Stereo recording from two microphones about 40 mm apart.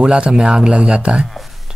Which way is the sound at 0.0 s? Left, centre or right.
Right.